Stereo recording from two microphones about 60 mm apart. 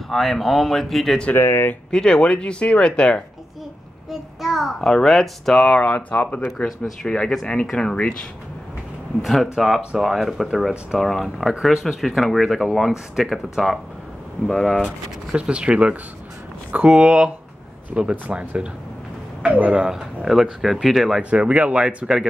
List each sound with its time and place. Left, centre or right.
0.1 s speech: centre
1.3 s speech: left
1.9 s speech: centre
4.1 s speech: centre
5.9 s speech: left
7.0 s speech: centre
9.2 s speech: centre
14.5 s speech: centre
15.3 s speech: centre
18.3 s speech: centre
21.2 s speech: right